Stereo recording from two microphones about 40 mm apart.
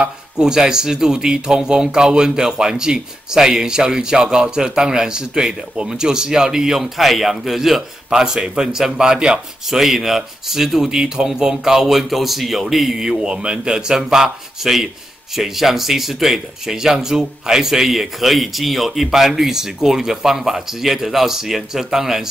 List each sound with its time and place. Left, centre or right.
0.0 s speech: centre
9.7 s speech: centre